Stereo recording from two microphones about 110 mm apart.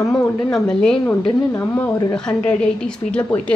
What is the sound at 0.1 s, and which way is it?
A woman's voice, 5° left (ahead or behind).